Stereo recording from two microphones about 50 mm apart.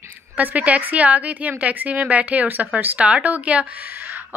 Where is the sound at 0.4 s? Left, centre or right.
Right.